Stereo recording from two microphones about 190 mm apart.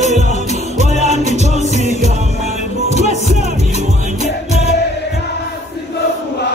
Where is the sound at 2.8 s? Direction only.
40° right (ahead or behind).